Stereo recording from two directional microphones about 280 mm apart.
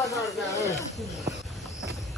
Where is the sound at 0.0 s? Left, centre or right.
Centre.